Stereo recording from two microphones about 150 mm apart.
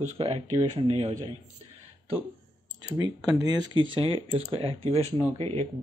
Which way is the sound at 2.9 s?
25° right (ahead or behind).